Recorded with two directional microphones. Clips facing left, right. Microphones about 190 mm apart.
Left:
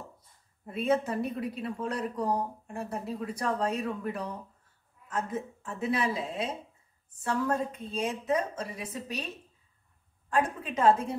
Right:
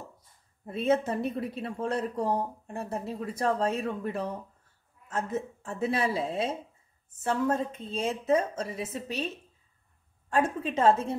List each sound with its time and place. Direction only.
0.7 s speech: 25° right (ahead or behind)
10.3 s speech: 30° right (ahead or behind)